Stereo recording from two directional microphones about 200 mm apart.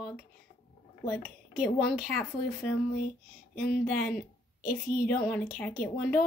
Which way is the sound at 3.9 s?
5° left (ahead or behind).